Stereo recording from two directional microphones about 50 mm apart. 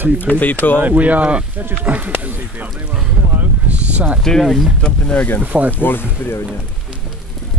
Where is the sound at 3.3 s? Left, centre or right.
Right.